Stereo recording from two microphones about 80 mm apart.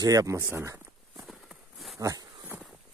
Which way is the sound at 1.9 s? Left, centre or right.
Right.